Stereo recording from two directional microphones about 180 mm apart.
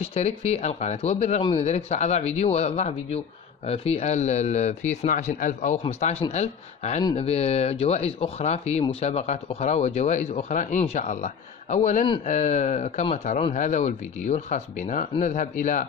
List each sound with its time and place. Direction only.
0.0 s speech: 35° left (ahead or behind)